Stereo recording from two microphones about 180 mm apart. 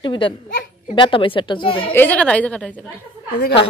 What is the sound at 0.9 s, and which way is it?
Speech, 25° left (ahead or behind).